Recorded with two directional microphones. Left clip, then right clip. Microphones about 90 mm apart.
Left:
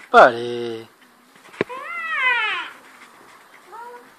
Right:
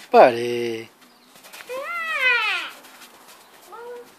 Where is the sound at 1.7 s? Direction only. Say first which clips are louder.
Right 4 dB; 55° right (ahead or behind).